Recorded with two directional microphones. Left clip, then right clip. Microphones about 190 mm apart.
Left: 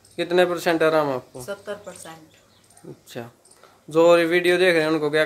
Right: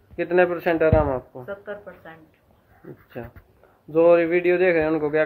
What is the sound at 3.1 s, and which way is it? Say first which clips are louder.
Speech: left 1 dB; 55° left (ahead or behind).